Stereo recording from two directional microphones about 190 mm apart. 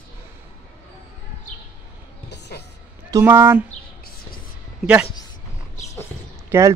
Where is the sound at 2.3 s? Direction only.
60° left (ahead or behind).